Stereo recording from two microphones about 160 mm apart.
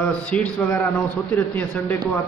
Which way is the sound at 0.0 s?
5° left (ahead or behind).